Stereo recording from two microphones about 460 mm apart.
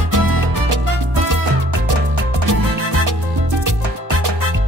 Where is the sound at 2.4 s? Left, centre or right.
Right.